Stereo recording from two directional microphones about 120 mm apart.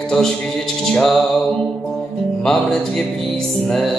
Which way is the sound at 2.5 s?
5° left (ahead or behind).